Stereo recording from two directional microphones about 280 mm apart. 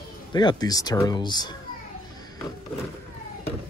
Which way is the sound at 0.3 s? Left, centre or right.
Centre.